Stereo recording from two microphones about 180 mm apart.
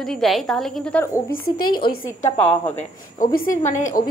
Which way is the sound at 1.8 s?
25° left (ahead or behind).